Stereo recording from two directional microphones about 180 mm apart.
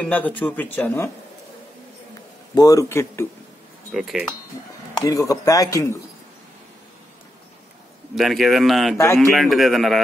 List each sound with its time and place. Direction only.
0.0 s speech: 10° left (ahead or behind)
2.5 s speech: 20° left (ahead or behind)
3.9 s speech: centre (ahead or behind)
4.9 s speech: 20° left (ahead or behind)
8.1 s speech: centre (ahead or behind)
8.9 s speech: 15° left (ahead or behind)
9.3 s speech: centre (ahead or behind)